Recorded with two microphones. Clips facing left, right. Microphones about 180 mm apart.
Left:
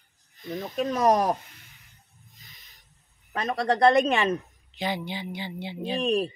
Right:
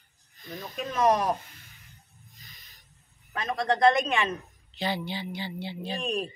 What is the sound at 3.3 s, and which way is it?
Speech, 35° left (ahead or behind).